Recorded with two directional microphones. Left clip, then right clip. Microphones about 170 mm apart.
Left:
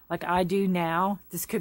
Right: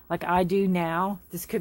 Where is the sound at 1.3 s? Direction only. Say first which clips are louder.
Right 1 dB; 35° left (ahead or behind).